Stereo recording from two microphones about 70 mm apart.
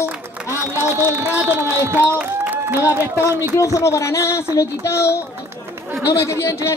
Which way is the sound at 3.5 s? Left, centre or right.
Left.